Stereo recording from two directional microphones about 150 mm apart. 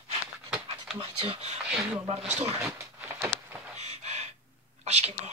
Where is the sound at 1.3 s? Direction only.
45° right (ahead or behind).